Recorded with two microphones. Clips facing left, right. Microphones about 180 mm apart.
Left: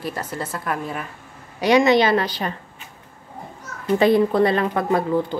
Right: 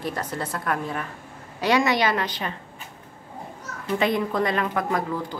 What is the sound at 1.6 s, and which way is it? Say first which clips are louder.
Speech: left 6 dB; 20° left (ahead or behind).